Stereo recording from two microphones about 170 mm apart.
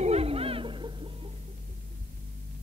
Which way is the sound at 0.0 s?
35° right (ahead or behind).